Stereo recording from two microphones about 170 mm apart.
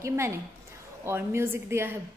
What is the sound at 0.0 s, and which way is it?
A woman's voice, 15° right (ahead or behind).